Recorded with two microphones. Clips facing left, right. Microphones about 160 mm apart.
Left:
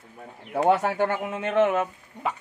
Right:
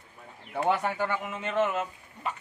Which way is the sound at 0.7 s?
65° left (ahead or behind).